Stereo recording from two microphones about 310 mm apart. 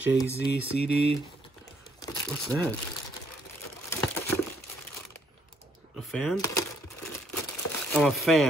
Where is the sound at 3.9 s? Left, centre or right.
Centre.